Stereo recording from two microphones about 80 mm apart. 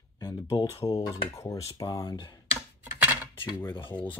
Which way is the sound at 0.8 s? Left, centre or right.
Left.